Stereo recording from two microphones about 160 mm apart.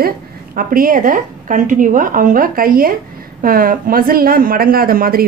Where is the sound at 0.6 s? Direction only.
60° right (ahead or behind).